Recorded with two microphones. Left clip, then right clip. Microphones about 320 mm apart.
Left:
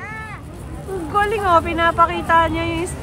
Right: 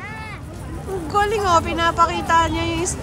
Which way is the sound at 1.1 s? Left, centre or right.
Centre.